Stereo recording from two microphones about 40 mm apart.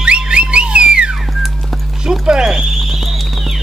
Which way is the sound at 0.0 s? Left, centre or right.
Right.